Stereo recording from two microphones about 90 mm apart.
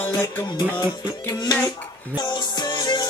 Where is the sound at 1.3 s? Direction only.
50° left (ahead or behind).